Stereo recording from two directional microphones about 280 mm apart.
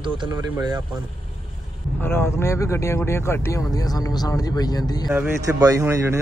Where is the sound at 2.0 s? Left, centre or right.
Centre.